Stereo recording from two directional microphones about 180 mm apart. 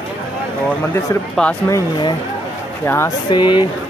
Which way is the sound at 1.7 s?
25° left (ahead or behind).